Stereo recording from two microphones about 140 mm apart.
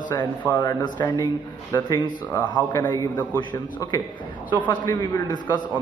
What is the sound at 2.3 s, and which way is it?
Speech, 20° left (ahead or behind).